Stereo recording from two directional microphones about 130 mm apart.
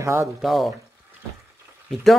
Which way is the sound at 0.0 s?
20° right (ahead or behind).